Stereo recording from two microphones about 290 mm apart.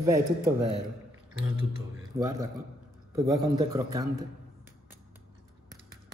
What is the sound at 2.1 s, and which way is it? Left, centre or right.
A man's voice, centre.